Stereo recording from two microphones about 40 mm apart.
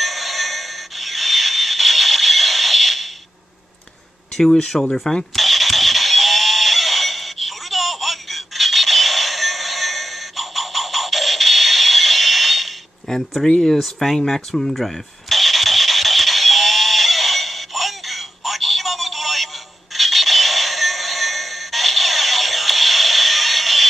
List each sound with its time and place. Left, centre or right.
0.0 s a sound: centre
4.4 s speech: centre
4.6 s a sound: centre
13.1 s speech: centre
13.7 s speech: centre
14.8 s engine starting: centre